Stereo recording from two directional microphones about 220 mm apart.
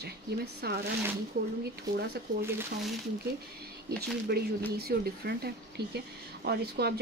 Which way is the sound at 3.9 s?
45° right (ahead or behind).